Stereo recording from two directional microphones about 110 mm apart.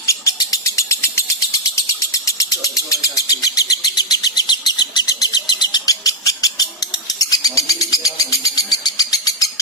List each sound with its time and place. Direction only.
0.0 s bird: 30° left (ahead or behind)